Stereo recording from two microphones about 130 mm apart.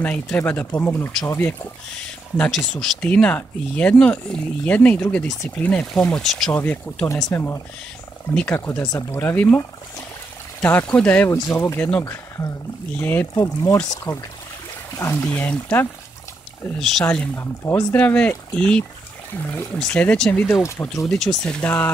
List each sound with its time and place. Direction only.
0.0 s speech: 10° left (ahead or behind)
2.3 s speech: 5° left (ahead or behind)
11.3 s speech: 25° left (ahead or behind)
17.0 s speech: 15° left (ahead or behind)
20.6 s speech: 20° left (ahead or behind)
21.1 s speech: 5° left (ahead or behind)